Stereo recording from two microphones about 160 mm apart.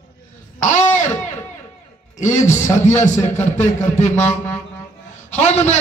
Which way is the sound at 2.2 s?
50° left (ahead or behind).